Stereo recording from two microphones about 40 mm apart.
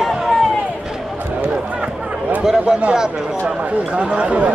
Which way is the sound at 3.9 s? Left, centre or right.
Right.